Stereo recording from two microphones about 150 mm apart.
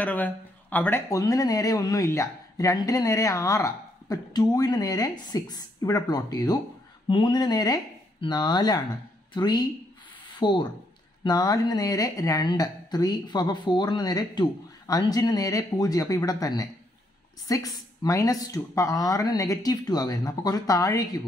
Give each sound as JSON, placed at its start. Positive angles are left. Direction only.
{"t": 0.0, "sound": "speech", "side_deg": 10}